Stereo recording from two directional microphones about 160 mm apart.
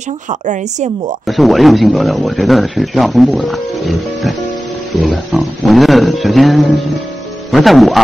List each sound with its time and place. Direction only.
0.3 s speech: 50° right (ahead or behind)
1.2 s speech: centre (ahead or behind)